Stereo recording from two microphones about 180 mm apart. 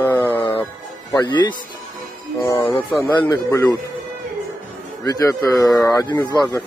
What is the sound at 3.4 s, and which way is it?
Speech, 10° left (ahead or behind).